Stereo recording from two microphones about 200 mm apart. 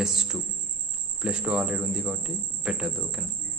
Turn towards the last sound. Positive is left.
turn(degrees=-5)  # may be behind; listen again after turning